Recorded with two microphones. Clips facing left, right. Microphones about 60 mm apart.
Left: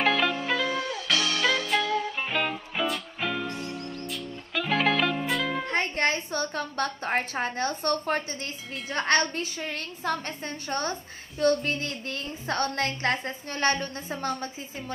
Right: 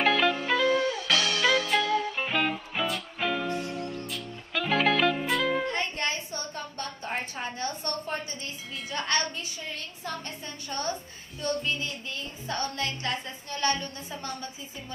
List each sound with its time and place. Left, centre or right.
0.0 s music: centre
5.7 s a sound: left
8.1 s a woman's voice: left
11.3 s a woman's voice: left